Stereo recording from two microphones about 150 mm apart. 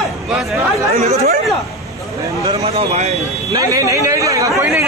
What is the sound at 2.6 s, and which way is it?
Speech, 45° right (ahead or behind).